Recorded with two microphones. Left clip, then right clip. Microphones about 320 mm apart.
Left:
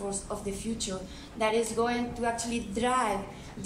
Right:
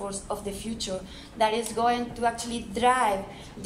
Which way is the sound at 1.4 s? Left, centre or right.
Right.